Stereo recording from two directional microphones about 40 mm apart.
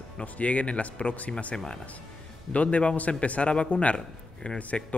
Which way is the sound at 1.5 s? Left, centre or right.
Left.